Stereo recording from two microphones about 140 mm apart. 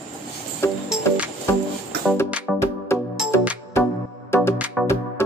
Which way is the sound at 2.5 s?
20° left (ahead or behind).